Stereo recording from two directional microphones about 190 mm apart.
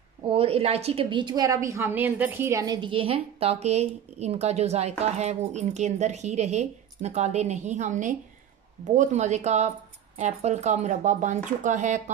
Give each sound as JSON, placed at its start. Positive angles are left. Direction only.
{"t": 0.3, "sound": "a woman's voice", "side_deg": -30}